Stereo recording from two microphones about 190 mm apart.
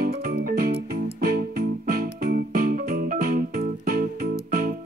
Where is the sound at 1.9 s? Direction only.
50° right (ahead or behind).